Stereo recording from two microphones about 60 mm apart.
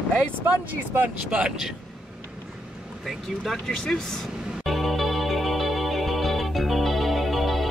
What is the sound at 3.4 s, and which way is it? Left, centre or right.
Speech, centre.